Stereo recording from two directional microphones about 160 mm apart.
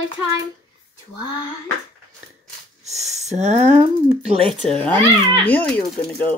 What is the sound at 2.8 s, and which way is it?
Speech, 45° right (ahead or behind).